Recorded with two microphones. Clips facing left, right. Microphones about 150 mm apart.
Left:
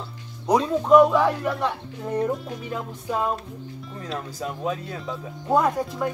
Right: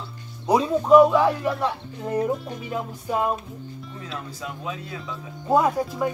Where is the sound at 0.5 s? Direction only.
5° right (ahead or behind).